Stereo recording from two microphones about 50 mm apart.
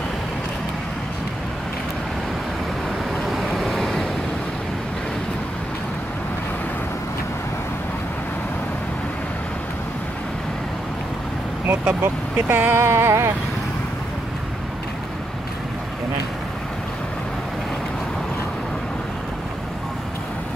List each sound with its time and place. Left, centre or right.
3.5 s waves: centre
12.0 s speech: right
12.7 s a sound: right